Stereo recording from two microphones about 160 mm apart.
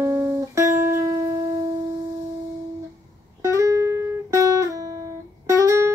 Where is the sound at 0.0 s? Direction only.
15° right (ahead or behind).